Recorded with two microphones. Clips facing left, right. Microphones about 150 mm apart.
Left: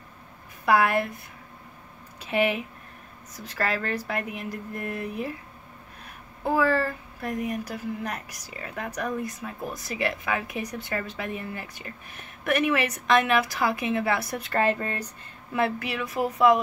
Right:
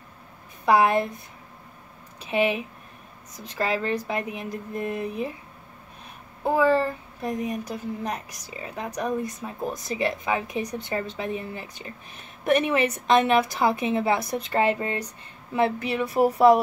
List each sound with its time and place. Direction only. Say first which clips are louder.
0.7 s a woman's voice: right 2 dB; 20° right (ahead or behind)
2.2 s a woman's voice: right 1 dB; 15° right (ahead or behind)
6.4 s a woman's voice: right 3 dB; 20° right (ahead or behind)
15.5 s speech: right 3 dB; 25° right (ahead or behind)